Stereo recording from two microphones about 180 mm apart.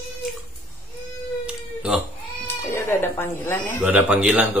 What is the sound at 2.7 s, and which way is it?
Speech, 15° left (ahead or behind).